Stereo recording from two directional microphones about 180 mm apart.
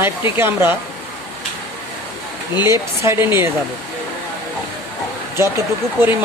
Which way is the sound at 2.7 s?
15° right (ahead or behind).